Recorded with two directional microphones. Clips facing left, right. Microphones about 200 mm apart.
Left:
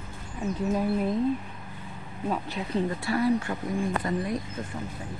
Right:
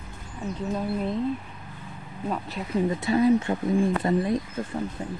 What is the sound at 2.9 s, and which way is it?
Speech, 20° right (ahead or behind).